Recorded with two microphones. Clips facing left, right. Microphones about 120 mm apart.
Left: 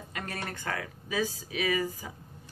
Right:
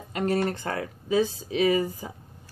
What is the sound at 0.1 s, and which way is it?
A woman's voice, 30° right (ahead or behind).